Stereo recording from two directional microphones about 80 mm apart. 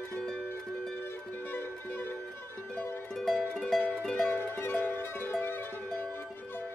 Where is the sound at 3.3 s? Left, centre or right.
Left.